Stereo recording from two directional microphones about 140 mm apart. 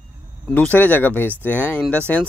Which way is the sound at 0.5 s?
10° left (ahead or behind).